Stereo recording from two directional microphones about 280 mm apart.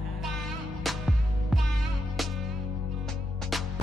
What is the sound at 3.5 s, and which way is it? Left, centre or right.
Music, centre.